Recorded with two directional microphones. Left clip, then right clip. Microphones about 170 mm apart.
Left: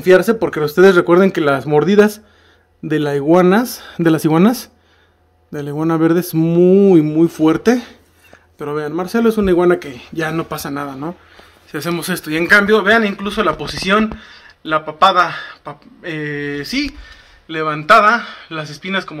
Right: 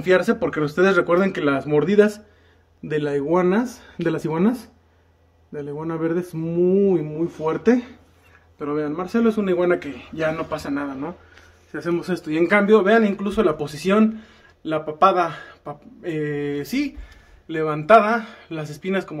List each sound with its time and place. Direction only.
0.0 s a man's voice: 55° left (ahead or behind); by 4.5 s 70° left (ahead or behind)
5.5 s a man's voice: 60° left (ahead or behind)
8.5 s a man's voice: 60° left (ahead or behind)
11.7 s speech: 25° left (ahead or behind)
12.3 s speech: 5° left (ahead or behind)